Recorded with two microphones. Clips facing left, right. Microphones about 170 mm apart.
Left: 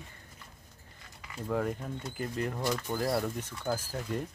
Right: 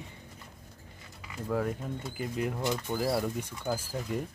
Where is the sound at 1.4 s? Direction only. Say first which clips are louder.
Right 1 dB; centre (ahead or behind).